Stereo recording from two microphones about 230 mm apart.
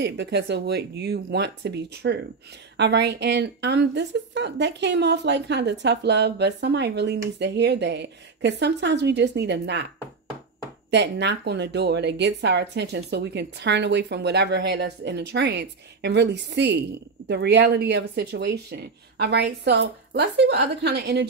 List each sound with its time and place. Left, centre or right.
0.0 s a woman's voice: right
10.9 s a woman's voice: right